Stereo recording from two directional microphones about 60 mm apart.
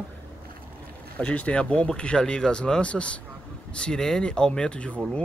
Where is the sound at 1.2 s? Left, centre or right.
Left.